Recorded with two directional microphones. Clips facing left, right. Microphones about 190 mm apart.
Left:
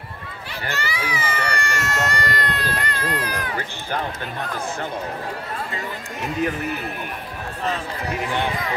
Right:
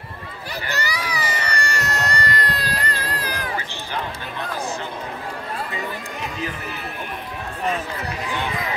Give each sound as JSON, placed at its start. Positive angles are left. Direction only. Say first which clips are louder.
{"t": 0.7, "sound": "baby cry", "louder": "left 1 dB", "side_deg": -40}